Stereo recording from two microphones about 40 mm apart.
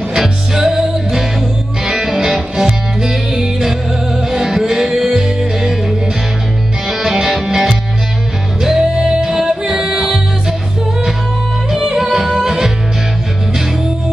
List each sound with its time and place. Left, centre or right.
0.7 s music: centre
11.7 s music: centre